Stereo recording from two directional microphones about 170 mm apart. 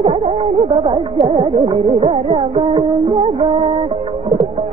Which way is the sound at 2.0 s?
40° right (ahead or behind).